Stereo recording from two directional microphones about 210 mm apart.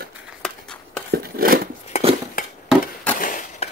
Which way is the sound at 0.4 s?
5° left (ahead or behind).